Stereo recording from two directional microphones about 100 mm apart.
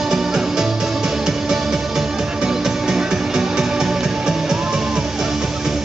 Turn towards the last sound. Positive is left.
turn(degrees=-5)  # may be behind; listen again after turning